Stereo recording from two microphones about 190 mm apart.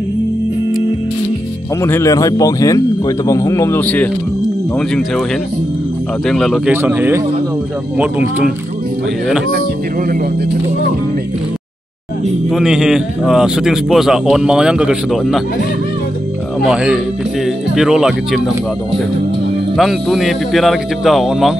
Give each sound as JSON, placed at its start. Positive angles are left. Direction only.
{"t": 1.8, "sound": "a man's voice", "side_deg": 15}
{"t": 6.2, "sound": "speech", "side_deg": 0}
{"t": 12.4, "sound": "a man's voice", "side_deg": 0}
{"t": 16.6, "sound": "a man's voice", "side_deg": -5}
{"t": 19.8, "sound": "a man's voice", "side_deg": 0}